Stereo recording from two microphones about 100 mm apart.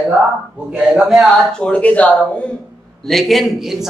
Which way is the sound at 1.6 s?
15° left (ahead or behind).